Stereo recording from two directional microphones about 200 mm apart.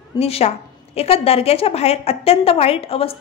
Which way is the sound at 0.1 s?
30° left (ahead or behind).